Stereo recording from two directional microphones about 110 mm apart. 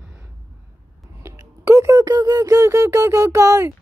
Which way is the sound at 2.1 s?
35° right (ahead or behind).